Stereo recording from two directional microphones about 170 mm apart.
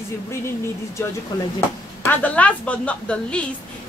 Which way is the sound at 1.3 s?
20° left (ahead or behind).